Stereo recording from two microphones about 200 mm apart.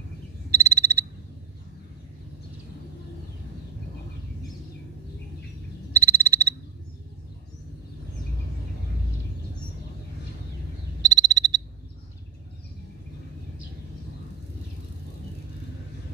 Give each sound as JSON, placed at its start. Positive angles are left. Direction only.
{"t": 0.5, "sound": "frog", "side_deg": -15}
{"t": 5.9, "sound": "frog", "side_deg": -15}
{"t": 11.0, "sound": "frog", "side_deg": -20}